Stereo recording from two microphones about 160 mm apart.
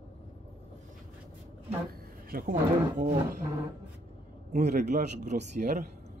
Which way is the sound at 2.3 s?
60° right (ahead or behind).